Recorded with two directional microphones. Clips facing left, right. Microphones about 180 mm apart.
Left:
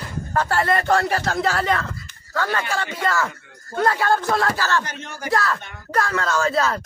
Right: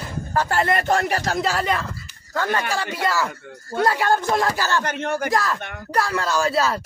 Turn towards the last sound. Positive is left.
turn(degrees=-10)  # may be behind; listen again after turning